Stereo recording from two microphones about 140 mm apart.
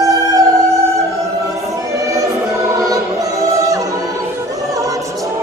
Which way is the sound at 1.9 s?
25° right (ahead or behind).